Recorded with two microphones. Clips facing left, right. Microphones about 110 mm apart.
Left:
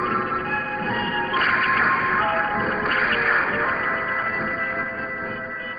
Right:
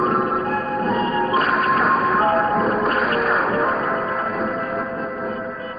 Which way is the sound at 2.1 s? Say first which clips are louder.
Right 5 dB; 40° right (ahead or behind).